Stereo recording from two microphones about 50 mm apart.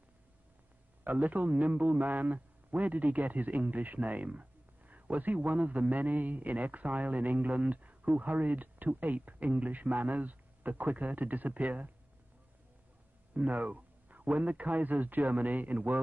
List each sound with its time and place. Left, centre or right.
1.0 s a man's voice: right
13.3 s a man's voice: right